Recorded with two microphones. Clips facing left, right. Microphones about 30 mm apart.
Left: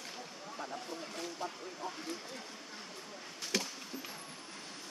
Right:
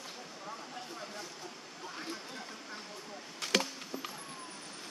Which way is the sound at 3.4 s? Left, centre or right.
Right.